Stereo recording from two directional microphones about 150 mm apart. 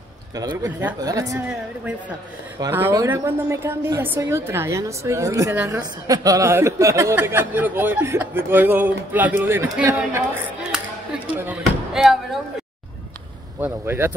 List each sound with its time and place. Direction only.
0.4 s a woman's voice: 20° right (ahead or behind)
2.7 s a woman's voice: 20° right (ahead or behind)
11.9 s speech: centre (ahead or behind)
13.6 s speech: 15° right (ahead or behind)